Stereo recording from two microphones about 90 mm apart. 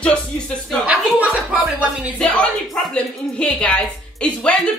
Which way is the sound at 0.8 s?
15° right (ahead or behind).